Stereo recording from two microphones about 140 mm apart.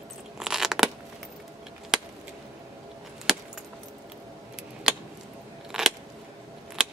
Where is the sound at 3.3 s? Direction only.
5° right (ahead or behind).